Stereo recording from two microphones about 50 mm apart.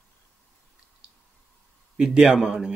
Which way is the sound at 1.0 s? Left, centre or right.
Centre.